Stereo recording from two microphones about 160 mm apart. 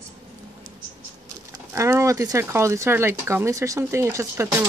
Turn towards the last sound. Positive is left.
turn(degrees=-15)  # may be behind; listen again after turning